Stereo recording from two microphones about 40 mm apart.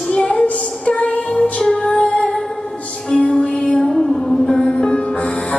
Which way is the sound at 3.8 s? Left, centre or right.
Centre.